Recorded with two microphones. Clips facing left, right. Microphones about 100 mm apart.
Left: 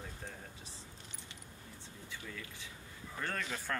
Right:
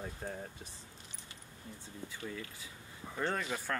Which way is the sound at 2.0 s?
30° right (ahead or behind).